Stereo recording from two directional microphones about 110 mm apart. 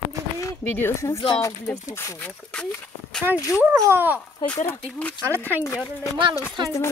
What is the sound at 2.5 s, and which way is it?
Speech, 10° left (ahead or behind).